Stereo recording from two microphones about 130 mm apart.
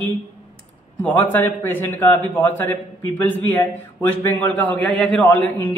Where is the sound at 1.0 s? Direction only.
15° left (ahead or behind).